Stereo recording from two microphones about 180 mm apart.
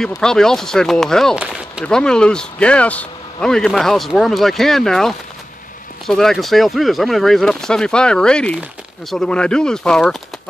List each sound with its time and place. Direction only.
0.2 s speech: 5° left (ahead or behind)